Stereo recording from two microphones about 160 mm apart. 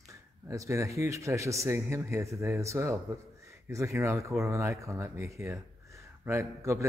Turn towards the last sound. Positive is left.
turn(degrees=-20)  # may be behind; listen again after turning